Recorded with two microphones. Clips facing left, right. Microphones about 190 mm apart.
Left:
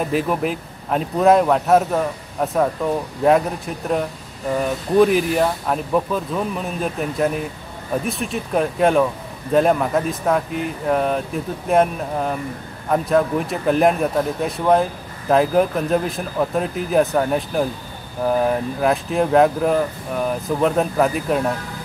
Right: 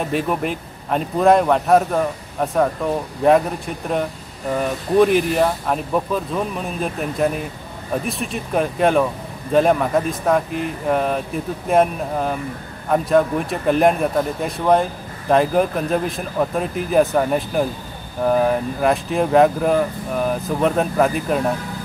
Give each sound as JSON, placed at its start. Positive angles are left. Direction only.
{"t": 0.0, "sound": "a man's voice", "side_deg": 0}